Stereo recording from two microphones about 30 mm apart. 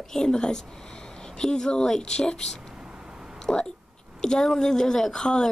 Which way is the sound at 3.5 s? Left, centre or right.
Left.